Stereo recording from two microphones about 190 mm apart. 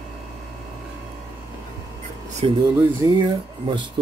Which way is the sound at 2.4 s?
30° right (ahead or behind).